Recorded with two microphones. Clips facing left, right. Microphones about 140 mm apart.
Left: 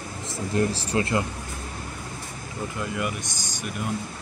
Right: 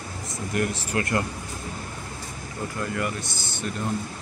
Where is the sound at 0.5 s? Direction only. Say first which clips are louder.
Left 2 dB; 30° left (ahead or behind).